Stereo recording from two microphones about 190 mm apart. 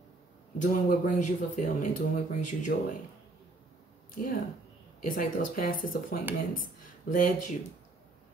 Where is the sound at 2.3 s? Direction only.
40° left (ahead or behind).